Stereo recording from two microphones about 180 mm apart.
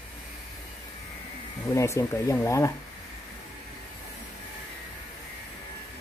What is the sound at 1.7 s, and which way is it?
Speech, 15° left (ahead or behind).